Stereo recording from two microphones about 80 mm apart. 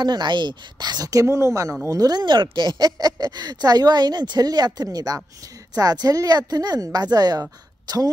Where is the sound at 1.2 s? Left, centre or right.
Right.